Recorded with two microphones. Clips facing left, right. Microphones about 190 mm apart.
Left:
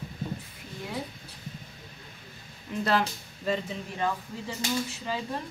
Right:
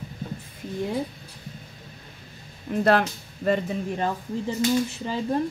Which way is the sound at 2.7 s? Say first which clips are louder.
Right 6 dB; 55° right (ahead or behind).